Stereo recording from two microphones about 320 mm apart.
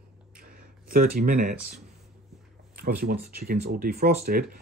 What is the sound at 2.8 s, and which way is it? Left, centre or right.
Speech, right.